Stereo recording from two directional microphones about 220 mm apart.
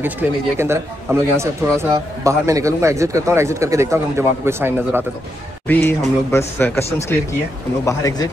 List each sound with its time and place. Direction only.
0.0 s a man's voice: 10° right (ahead or behind)
5.7 s speech: 10° left (ahead or behind)